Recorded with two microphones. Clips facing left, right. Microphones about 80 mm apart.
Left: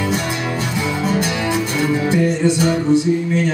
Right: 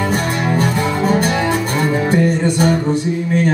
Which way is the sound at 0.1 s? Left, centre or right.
Right.